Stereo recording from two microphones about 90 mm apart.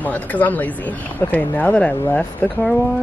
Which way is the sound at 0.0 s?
20° left (ahead or behind).